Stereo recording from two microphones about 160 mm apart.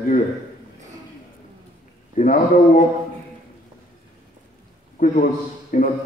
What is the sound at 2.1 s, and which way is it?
Speech, 55° left (ahead or behind).